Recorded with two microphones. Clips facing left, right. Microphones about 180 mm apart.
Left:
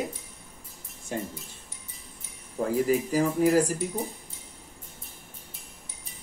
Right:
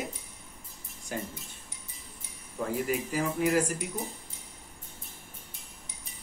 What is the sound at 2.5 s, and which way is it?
Speech, 40° left (ahead or behind).